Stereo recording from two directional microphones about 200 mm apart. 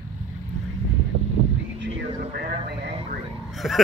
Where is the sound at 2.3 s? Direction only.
50° right (ahead or behind).